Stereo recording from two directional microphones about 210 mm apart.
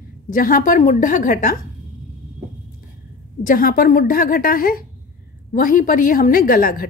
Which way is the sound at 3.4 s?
40° left (ahead or behind).